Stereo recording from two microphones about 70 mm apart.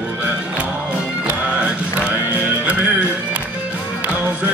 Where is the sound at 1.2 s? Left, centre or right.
Centre.